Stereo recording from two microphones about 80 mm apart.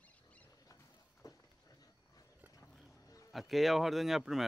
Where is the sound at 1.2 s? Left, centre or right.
Left.